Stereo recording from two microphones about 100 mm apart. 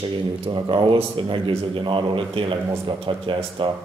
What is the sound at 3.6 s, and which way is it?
Speech, 55° right (ahead or behind).